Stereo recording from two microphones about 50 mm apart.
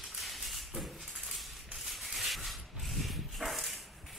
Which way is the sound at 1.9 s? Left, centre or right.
Centre.